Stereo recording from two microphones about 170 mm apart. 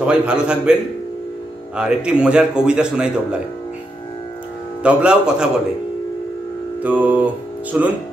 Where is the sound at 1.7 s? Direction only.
5° right (ahead or behind).